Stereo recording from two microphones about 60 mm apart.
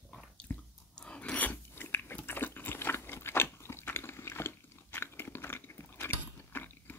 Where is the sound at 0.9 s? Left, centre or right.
Centre; by 4.6 s left.